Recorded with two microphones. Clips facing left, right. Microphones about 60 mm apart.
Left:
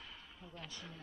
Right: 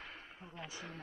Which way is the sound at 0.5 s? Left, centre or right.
Centre.